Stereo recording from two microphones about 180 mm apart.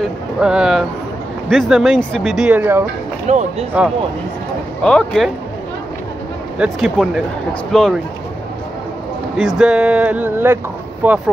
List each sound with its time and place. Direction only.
0.4 s speech: 5° right (ahead or behind)
3.3 s speech: 40° right (ahead or behind)
4.8 s speech: 5° left (ahead or behind)
6.6 s speech: centre (ahead or behind)
9.6 s speech: 5° right (ahead or behind)